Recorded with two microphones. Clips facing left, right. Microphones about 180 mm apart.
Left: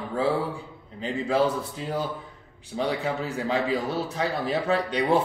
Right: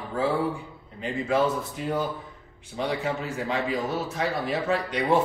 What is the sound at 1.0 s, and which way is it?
A man's voice, 35° left (ahead or behind).